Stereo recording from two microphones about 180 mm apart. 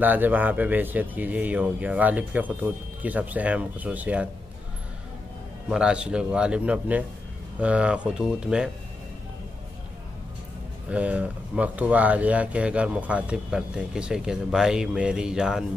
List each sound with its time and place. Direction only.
0.0 s speech: 10° right (ahead or behind)
5.7 s speech: 5° right (ahead or behind)
10.9 s speech: 5° right (ahead or behind)